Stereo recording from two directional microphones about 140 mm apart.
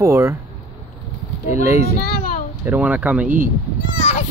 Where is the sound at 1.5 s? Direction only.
60° left (ahead or behind).